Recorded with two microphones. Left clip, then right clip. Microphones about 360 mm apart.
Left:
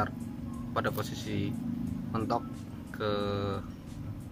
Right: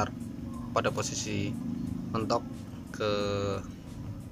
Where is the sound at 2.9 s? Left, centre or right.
Centre.